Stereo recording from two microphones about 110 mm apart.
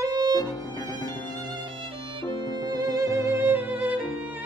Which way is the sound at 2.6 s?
35° right (ahead or behind).